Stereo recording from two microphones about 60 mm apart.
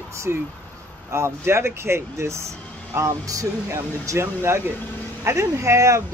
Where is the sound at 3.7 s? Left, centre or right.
Right.